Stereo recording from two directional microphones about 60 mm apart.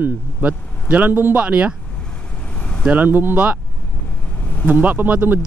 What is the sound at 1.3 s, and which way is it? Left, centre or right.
Speech, centre.